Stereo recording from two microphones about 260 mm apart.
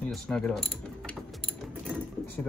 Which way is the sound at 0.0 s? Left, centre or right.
Centre.